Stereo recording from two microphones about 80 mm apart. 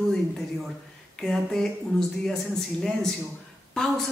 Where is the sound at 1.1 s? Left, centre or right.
Centre.